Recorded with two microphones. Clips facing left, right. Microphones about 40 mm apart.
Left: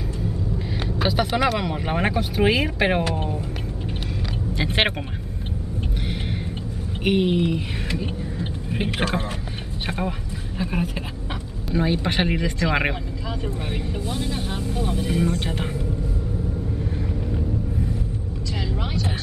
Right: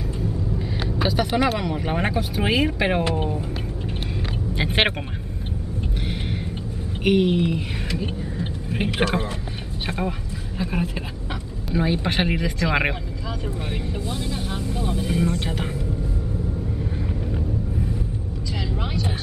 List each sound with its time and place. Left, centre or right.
1.2 s speech: centre
3.0 s speech: centre
4.6 s speech: centre
7.0 s speech: centre
8.0 s vehicle: centre
9.8 s speech: centre
18.7 s vehicle: centre